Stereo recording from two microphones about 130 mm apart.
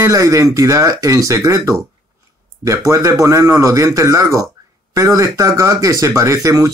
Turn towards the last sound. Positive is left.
turn(degrees=-25)  # may be behind; listen again after turning